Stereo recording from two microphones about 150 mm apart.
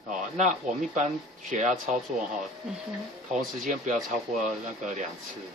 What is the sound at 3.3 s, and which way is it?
Speech, 55° right (ahead or behind).